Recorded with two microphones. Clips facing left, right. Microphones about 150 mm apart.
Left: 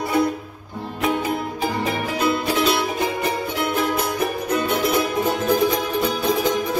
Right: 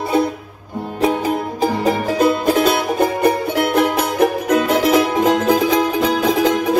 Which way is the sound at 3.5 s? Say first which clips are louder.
Right 6 dB; 75° right (ahead or behind).